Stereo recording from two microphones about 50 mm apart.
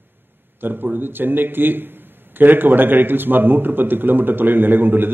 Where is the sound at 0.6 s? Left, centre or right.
Right.